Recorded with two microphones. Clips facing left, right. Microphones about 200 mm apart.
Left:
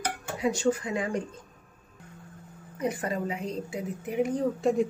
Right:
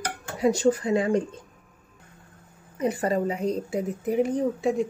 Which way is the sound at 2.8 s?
30° right (ahead or behind).